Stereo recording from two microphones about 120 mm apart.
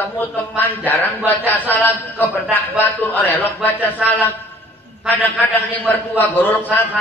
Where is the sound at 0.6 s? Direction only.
15° left (ahead or behind).